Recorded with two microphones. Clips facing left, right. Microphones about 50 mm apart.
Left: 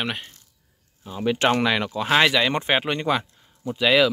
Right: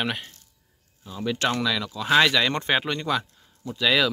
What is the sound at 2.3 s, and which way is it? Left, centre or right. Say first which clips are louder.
Speech: left 2 dB; centre.